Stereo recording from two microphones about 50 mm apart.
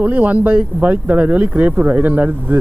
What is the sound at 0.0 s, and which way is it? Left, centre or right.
Speech, right.